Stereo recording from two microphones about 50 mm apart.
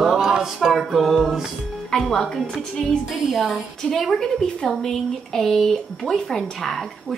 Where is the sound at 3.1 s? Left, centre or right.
Centre.